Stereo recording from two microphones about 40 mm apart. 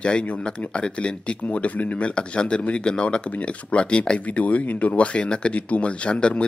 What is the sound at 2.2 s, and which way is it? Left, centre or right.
Speech, left.